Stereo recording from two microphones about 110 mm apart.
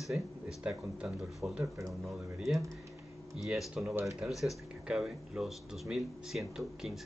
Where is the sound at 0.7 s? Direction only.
5° right (ahead or behind).